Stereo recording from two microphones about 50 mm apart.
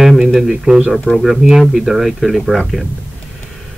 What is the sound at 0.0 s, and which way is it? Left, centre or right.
Speech, centre.